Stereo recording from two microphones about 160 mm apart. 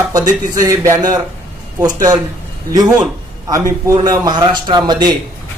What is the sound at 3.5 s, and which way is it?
A man's voice, 25° right (ahead or behind).